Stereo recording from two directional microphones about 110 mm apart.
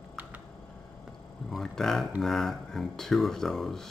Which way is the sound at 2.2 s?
Centre (ahead or behind).